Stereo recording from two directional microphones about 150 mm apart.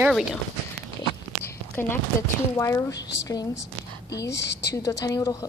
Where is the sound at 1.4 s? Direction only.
15° left (ahead or behind).